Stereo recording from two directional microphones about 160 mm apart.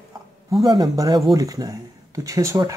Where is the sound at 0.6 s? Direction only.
25° right (ahead or behind).